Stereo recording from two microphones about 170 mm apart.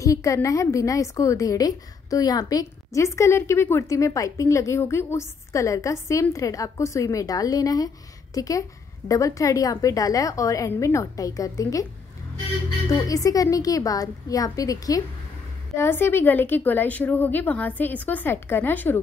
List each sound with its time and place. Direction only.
0.0 s a woman's voice: 20° left (ahead or behind)
12.9 s a woman's voice: 20° left (ahead or behind)